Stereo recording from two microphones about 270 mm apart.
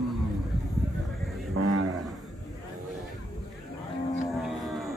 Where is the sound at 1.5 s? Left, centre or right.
Right.